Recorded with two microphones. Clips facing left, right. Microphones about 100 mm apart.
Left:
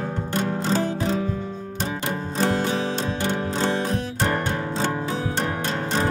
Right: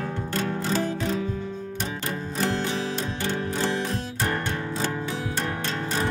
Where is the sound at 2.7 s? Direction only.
30° left (ahead or behind).